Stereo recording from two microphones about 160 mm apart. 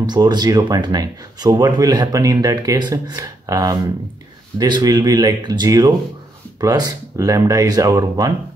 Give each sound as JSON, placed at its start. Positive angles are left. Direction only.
{"t": 0.0, "sound": "speech", "side_deg": -25}